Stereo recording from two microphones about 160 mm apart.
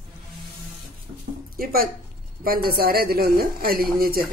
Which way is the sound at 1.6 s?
65° right (ahead or behind).